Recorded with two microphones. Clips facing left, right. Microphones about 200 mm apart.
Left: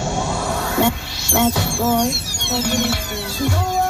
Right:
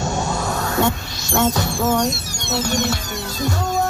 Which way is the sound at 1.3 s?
10° left (ahead or behind).